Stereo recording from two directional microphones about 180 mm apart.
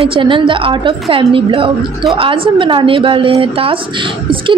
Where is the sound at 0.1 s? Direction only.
30° right (ahead or behind).